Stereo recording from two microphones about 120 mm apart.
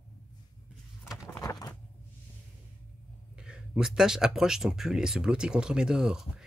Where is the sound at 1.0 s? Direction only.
5° right (ahead or behind).